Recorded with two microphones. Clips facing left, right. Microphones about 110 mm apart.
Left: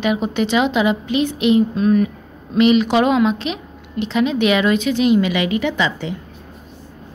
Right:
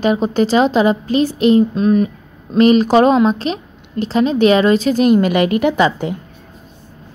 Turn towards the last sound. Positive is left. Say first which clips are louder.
# right 6 dB
turn(degrees=-50)  # may be behind; listen again after turning